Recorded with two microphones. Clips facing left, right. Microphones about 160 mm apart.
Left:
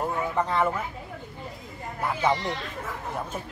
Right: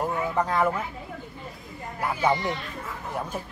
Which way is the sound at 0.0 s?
10° right (ahead or behind).